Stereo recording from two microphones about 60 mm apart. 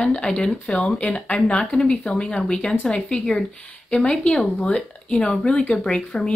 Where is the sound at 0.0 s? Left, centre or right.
Centre.